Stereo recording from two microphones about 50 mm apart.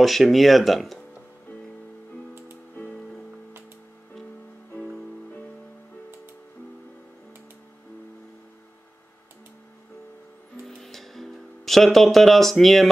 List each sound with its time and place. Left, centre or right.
0.0 s speech: centre
10.6 s music: centre